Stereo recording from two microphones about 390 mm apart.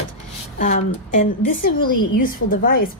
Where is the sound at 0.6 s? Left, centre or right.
Centre.